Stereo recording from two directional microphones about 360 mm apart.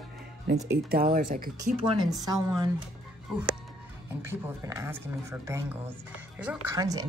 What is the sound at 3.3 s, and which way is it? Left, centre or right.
Music, centre.